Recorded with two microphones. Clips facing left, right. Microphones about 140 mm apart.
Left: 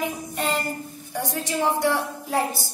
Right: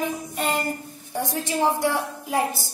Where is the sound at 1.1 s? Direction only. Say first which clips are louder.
Right 1 dB; 20° right (ahead or behind).